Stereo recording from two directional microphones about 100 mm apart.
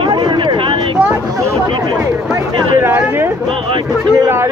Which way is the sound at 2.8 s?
20° right (ahead or behind).